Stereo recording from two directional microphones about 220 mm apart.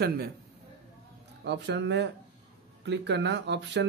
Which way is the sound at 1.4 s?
50° right (ahead or behind).